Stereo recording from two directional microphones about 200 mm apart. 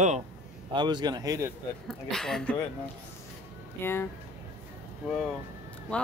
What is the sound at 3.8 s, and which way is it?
Speech, 10° left (ahead or behind).